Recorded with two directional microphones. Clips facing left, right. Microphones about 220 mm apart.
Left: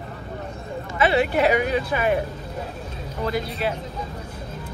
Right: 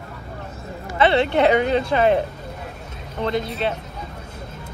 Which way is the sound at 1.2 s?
25° right (ahead or behind).